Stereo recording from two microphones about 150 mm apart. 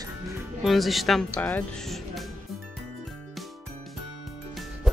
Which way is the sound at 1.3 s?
10° left (ahead or behind).